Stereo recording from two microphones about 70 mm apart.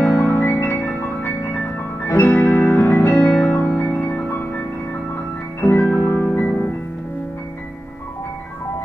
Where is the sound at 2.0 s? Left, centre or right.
Left.